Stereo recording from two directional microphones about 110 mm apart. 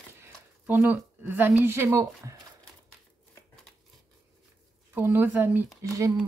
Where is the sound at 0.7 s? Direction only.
15° right (ahead or behind).